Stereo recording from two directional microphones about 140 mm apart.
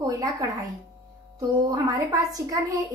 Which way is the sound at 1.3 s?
25° right (ahead or behind).